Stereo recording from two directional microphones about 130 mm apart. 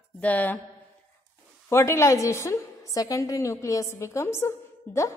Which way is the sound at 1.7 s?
20° left (ahead or behind).